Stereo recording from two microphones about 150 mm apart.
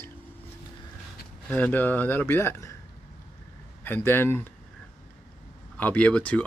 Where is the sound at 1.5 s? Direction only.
10° left (ahead or behind).